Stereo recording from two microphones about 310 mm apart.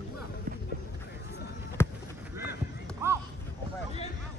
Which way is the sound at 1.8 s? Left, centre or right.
Centre.